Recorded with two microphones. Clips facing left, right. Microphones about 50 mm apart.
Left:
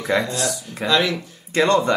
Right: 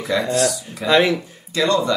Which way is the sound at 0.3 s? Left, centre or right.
Right.